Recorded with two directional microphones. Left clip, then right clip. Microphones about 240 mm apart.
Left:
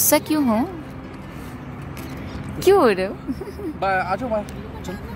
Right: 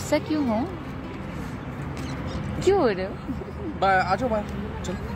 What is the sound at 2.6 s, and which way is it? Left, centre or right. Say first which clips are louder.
Speech: left 6 dB; left.